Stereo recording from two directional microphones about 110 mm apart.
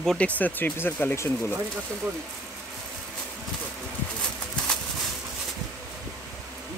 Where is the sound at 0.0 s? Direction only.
5° left (ahead or behind).